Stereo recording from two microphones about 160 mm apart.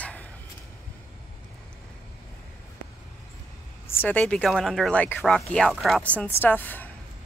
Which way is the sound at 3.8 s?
15° left (ahead or behind).